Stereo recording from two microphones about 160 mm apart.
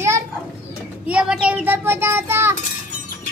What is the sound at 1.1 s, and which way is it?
Child singing, 5° right (ahead or behind).